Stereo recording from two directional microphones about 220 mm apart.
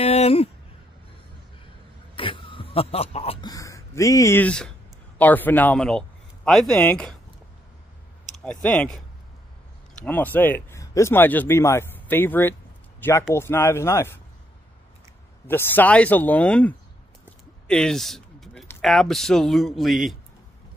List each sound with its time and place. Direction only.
0.0 s a sound: 25° left (ahead or behind)
2.1 s a sound: 25° left (ahead or behind); by 4.6 s 5° left (ahead or behind)
5.2 s speech: 10° left (ahead or behind)
8.5 s speech: 5° left (ahead or behind)
10.0 s speech: 10° left (ahead or behind)
15.4 s speech: 10° left (ahead or behind)